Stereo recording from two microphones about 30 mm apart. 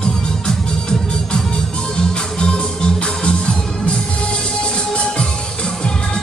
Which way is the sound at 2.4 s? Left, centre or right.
Left.